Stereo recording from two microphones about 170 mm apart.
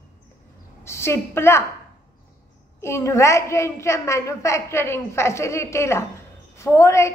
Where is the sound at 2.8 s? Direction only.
15° left (ahead or behind).